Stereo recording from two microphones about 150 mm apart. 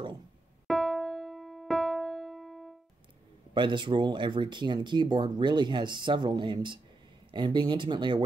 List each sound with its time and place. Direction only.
0.7 s music: centre (ahead or behind)
3.5 s speech: 30° right (ahead or behind)